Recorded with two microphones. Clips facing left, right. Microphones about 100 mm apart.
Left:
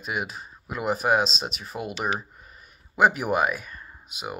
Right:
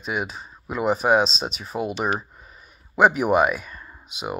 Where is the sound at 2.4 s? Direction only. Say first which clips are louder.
Right 2 dB; centre (ahead or behind).